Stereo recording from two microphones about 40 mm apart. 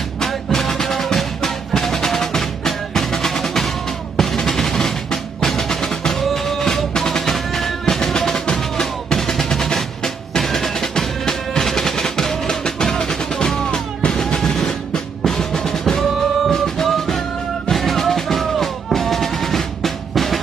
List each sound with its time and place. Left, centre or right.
0.2 s music: centre
8.5 s drum: centre
9.4 s percussion: centre
12.8 s music: centre
13.7 s music: left
14.2 s music: centre
15.2 s drum: centre
16.0 s music: centre